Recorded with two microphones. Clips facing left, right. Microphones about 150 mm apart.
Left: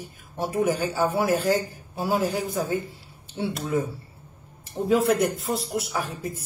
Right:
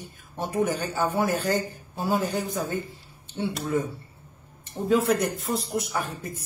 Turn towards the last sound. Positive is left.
turn(degrees=0)  # may be behind; listen again after turning